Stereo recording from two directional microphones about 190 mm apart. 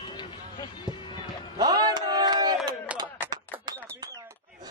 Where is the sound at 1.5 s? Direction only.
20° right (ahead or behind).